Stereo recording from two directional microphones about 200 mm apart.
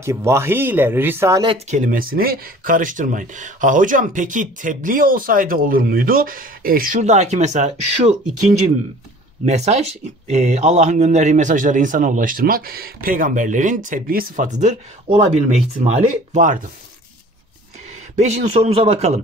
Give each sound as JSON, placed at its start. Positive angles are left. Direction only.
{"t": 0.0, "sound": "speech", "side_deg": -15}
{"t": 1.5, "sound": "speech", "side_deg": -35}
{"t": 18.1, "sound": "speech", "side_deg": -35}